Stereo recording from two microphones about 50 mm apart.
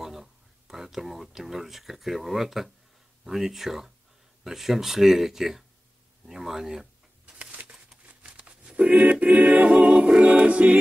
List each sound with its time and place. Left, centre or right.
0.0 s speech: centre
7.6 s a sound: centre
8.1 s choir: right
10.2 s music: right